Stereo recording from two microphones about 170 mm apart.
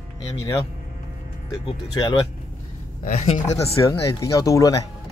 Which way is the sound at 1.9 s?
25° left (ahead or behind).